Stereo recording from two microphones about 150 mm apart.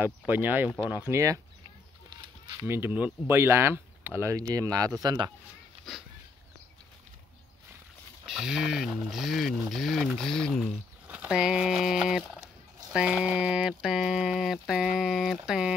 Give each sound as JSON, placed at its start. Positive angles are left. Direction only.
{"t": 0.3, "sound": "speech", "side_deg": -15}
{"t": 2.6, "sound": "speech", "side_deg": -15}
{"t": 8.3, "sound": "speech", "side_deg": -5}